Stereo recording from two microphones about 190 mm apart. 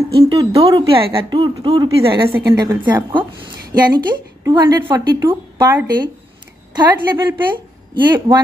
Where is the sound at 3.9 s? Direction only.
20° right (ahead or behind).